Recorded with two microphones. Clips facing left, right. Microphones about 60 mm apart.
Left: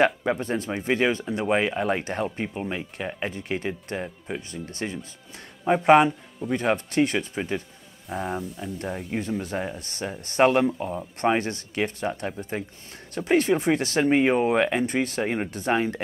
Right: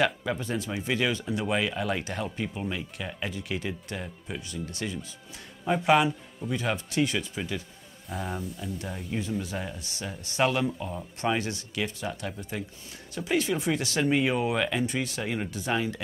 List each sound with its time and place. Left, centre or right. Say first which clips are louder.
0.0 s speech: left 5 dB; left
8.1 s speech: left 5 dB; centre
8.8 s speech: left 5 dB; left